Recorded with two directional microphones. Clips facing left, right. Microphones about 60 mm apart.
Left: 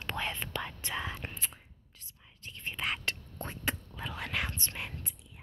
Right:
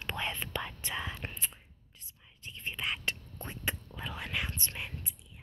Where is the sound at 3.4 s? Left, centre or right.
Centre.